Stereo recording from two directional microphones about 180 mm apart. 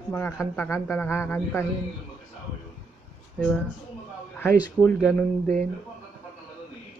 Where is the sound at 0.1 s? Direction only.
10° left (ahead or behind).